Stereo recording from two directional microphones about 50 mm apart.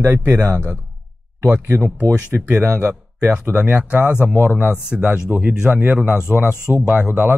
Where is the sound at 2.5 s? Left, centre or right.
Right.